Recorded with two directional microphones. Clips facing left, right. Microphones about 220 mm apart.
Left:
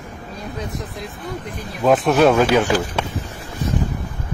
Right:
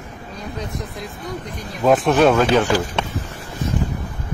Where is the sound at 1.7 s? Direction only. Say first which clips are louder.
Even; centre (ahead or behind).